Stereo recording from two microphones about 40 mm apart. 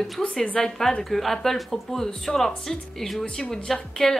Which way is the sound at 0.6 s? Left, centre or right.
Centre.